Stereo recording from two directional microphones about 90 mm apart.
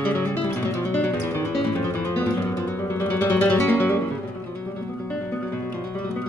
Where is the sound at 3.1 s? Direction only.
20° left (ahead or behind).